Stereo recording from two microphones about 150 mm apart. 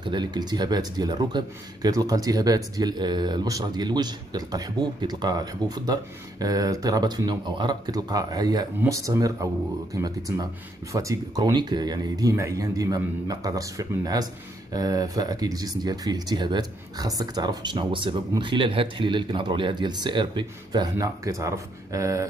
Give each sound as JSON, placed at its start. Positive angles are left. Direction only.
{"t": 0.0, "sound": "speech", "side_deg": -30}